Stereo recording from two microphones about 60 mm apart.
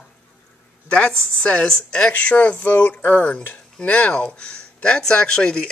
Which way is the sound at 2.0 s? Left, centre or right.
Left.